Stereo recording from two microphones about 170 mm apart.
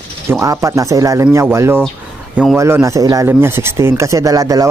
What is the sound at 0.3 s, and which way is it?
Speech, 15° right (ahead or behind).